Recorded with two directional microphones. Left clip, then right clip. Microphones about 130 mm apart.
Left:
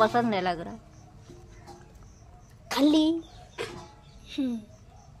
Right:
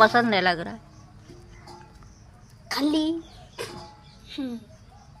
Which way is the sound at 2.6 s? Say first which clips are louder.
Left 2 dB; 70° left (ahead or behind).